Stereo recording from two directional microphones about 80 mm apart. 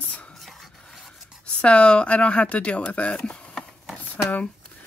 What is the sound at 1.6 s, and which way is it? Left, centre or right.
Speech, centre.